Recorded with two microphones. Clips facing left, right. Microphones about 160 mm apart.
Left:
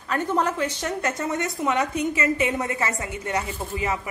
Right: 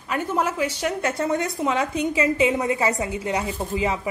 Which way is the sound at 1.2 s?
25° right (ahead or behind).